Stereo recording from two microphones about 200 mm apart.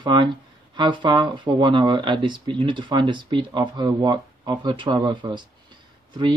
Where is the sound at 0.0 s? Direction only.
20° right (ahead or behind).